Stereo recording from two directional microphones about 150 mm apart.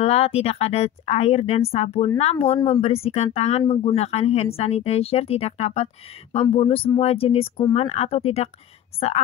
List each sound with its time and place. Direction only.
0.0 s a woman's voice: 40° left (ahead or behind)